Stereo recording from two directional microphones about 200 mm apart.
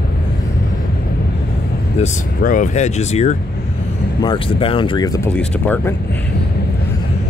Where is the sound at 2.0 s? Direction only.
40° left (ahead or behind); by 5.9 s 10° left (ahead or behind).